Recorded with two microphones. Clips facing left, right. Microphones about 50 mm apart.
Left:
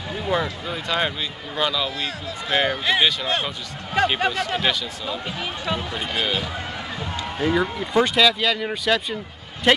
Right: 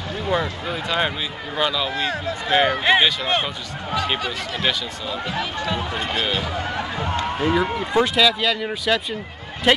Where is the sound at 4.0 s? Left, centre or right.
Left.